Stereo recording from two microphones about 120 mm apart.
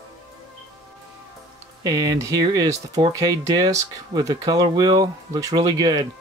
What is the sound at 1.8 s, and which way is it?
Speech, 30° right (ahead or behind).